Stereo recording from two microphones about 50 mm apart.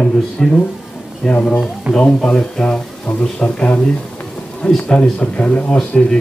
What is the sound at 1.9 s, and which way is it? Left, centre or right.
Speech, right.